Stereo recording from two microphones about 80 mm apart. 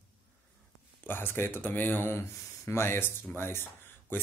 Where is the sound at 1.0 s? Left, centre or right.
Left.